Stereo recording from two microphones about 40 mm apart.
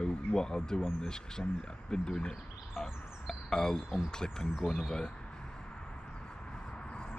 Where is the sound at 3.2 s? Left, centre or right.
Centre.